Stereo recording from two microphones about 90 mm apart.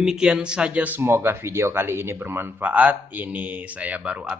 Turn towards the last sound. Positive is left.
turn(degrees=-10)  # may be behind; listen again after turning